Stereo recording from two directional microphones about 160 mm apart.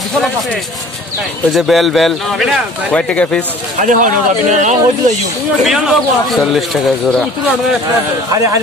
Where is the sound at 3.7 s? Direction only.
50° right (ahead or behind).